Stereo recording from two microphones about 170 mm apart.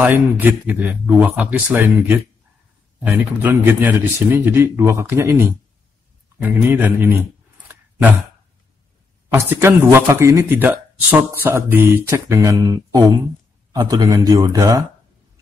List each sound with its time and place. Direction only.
0.0 s speech: 10° right (ahead or behind)
3.5 s a man's voice: 10° right (ahead or behind)
9.3 s a man's voice: 10° right (ahead or behind)